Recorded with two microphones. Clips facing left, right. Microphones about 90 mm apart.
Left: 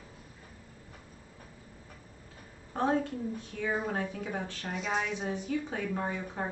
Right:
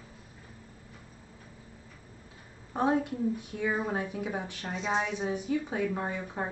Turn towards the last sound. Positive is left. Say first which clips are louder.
# right 1 dB
turn(degrees=-15)  # may be behind; listen again after turning